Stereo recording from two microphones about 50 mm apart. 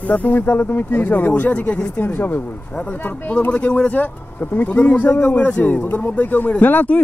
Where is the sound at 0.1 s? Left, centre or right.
Left.